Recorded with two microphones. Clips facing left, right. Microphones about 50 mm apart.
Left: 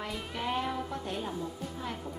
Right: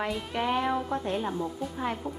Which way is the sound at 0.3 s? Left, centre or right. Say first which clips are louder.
Right 5 dB; right.